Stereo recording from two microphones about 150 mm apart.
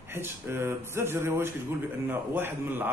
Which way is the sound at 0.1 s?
15° right (ahead or behind).